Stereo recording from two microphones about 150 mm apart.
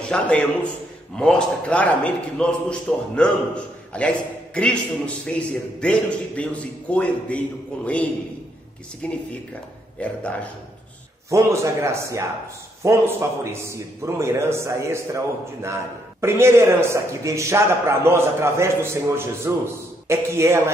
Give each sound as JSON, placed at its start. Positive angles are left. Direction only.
{"t": 0.0, "sound": "a man's voice", "side_deg": 5}
{"t": 11.2, "sound": "a man's voice", "side_deg": -20}